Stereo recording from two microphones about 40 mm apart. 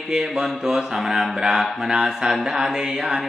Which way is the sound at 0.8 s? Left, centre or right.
Centre.